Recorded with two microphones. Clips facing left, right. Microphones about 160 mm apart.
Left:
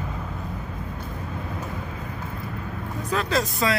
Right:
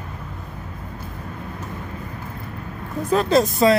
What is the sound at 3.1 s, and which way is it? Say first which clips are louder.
Speech: right 8 dB; 25° right (ahead or behind).